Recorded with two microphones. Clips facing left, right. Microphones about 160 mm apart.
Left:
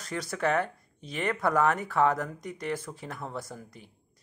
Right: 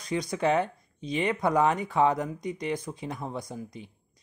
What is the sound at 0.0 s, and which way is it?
Speech, 15° right (ahead or behind).